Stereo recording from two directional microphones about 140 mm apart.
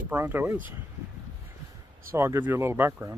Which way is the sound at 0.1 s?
15° right (ahead or behind).